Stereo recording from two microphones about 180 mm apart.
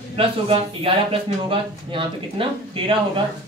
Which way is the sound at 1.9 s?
30° right (ahead or behind).